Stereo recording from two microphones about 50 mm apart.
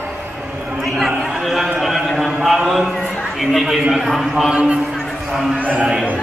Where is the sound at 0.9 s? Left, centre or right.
Centre.